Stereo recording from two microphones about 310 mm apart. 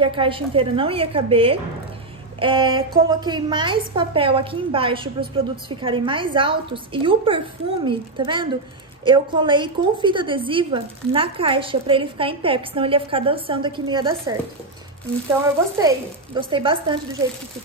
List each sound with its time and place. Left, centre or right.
0.0 s a woman's voice: centre
15.8 s a woman's voice: centre